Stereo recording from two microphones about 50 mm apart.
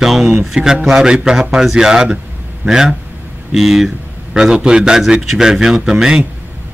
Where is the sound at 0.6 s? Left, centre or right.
Centre.